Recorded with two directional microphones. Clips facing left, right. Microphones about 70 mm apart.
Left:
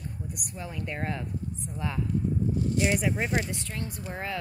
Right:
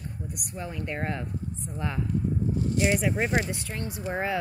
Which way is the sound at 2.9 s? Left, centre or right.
Centre.